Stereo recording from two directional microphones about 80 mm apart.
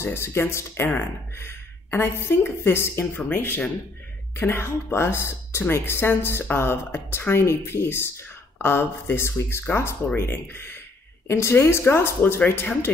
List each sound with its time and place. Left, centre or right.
0.0 s speech: left
1.4 s a sound: left
2.2 s speech: left